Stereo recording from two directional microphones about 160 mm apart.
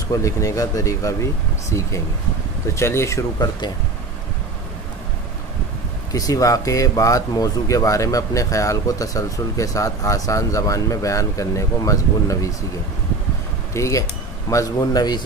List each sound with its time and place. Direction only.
0.1 s speech: 20° left (ahead or behind)
6.1 s speech: 20° left (ahead or behind)
13.7 s speech: 20° left (ahead or behind)